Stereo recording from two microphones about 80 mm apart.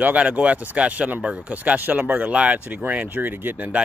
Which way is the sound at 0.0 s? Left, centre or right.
Centre.